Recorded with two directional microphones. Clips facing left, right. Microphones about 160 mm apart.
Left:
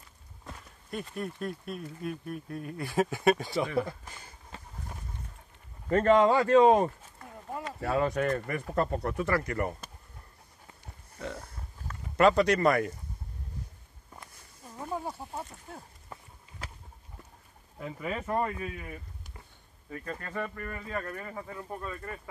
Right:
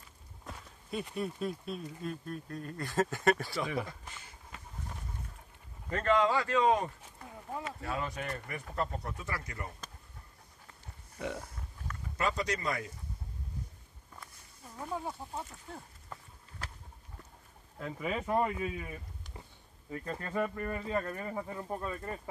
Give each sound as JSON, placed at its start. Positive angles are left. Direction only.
{"t": 0.5, "sound": "walk", "side_deg": -5}
{"t": 1.1, "sound": "speech", "side_deg": 0}
{"t": 4.5, "sound": "a sound", "side_deg": 30}
{"t": 5.9, "sound": "speech", "side_deg": 40}
{"t": 6.6, "sound": "speech", "side_deg": 35}
{"t": 7.8, "sound": "speech", "side_deg": 55}
{"t": 11.1, "sound": "speech", "side_deg": -10}
{"t": 12.2, "sound": "speech", "side_deg": 70}
{"t": 14.8, "sound": "a sound", "side_deg": 5}
{"t": 17.9, "sound": "speech", "side_deg": -5}
{"t": 19.9, "sound": "speech", "side_deg": -20}